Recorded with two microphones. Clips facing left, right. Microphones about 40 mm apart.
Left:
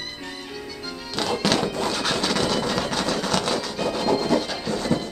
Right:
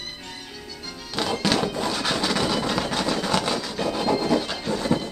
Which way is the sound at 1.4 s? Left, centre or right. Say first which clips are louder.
Left 1 dB; centre.